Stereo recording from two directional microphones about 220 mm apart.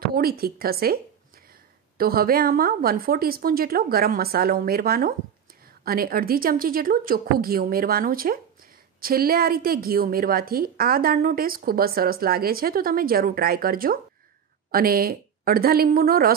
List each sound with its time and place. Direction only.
0.0 s a woman's voice: 45° right (ahead or behind)
2.0 s a woman's voice: 45° right (ahead or behind)